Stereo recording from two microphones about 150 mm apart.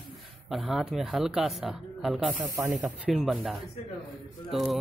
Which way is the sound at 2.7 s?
Centre (ahead or behind).